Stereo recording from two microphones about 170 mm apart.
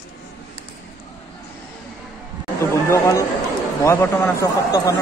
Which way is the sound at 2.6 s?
15° left (ahead or behind).